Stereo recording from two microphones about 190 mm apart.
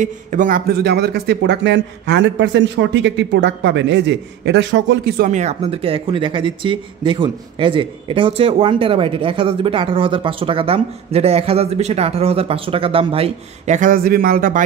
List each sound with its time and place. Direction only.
0.0 s speech: 40° right (ahead or behind)
5.3 s speech: 35° right (ahead or behind)
13.7 s speech: 45° right (ahead or behind)